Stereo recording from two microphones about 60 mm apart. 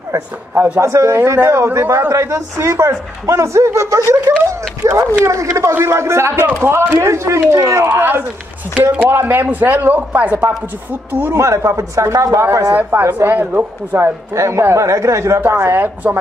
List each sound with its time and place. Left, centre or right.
0.7 s speech: right
6.3 s speech: right
8.9 s a woman's voice: right
11.3 s speech: right
12.7 s speech: right
13.9 s speech: right
15.7 s a woman's voice: right